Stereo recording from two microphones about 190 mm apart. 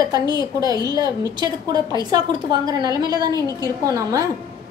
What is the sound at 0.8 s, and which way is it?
A woman's voice, 20° right (ahead or behind).